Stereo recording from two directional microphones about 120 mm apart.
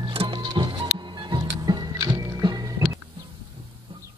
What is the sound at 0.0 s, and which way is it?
Music, 45° right (ahead or behind).